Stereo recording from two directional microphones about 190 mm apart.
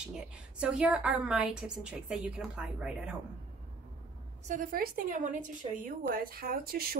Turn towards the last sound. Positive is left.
turn(degrees=-50)  # may be behind; listen again after turning